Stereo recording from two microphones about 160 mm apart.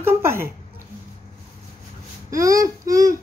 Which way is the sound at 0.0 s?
15° right (ahead or behind).